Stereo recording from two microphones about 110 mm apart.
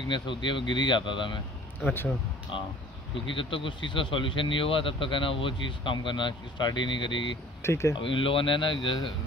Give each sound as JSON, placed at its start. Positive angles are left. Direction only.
{"t": 0.1, "sound": "speech", "side_deg": 45}
{"t": 1.8, "sound": "speech", "side_deg": 20}
{"t": 3.3, "sound": "speech", "side_deg": 50}
{"t": 7.6, "sound": "speech", "side_deg": 25}
{"t": 8.1, "sound": "speech", "side_deg": 50}